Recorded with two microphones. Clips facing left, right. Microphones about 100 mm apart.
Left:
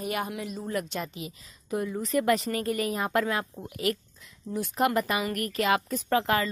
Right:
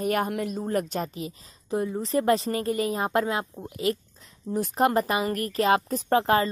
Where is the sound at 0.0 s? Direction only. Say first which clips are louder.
Right 6 dB; 50° right (ahead or behind).